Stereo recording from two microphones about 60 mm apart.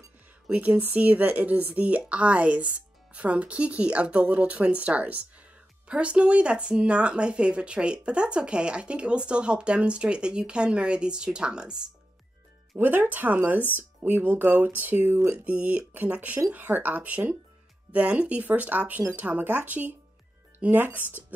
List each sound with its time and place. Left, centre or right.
0.5 s speech: right
12.7 s speech: right
15.3 s speech: right